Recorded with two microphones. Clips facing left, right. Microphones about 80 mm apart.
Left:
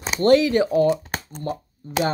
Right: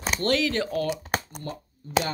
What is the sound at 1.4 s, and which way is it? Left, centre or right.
Speech, left.